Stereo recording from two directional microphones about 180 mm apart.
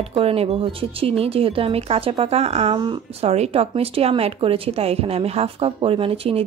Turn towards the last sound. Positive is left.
turn(degrees=-30)  # may be behind; listen again after turning